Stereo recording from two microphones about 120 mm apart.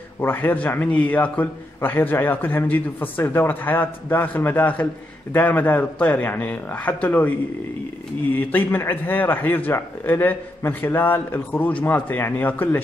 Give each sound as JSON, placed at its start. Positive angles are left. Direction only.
{"t": 0.2, "sound": "a man's voice", "side_deg": 15}